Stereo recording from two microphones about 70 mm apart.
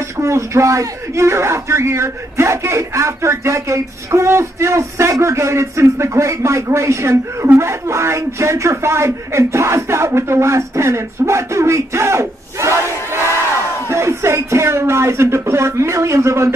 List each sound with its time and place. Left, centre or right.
0.2 s speech: right